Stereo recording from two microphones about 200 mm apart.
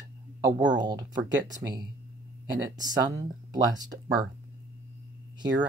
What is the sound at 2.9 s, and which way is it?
Speech, 20° right (ahead or behind).